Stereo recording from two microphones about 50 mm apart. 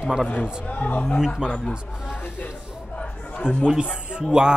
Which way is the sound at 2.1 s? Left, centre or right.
Left.